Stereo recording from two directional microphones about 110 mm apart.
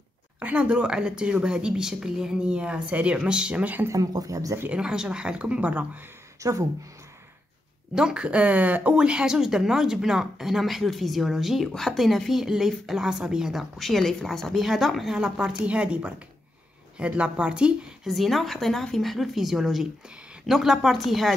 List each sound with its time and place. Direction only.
0.4 s speech: 15° right (ahead or behind)
3.9 s speech: 30° right (ahead or behind)
4.6 s speech: 10° right (ahead or behind)
6.4 s speech: 30° right (ahead or behind)
7.9 s speech: 10° right (ahead or behind)